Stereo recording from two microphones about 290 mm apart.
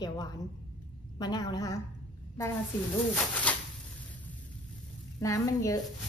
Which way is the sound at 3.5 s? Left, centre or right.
Centre.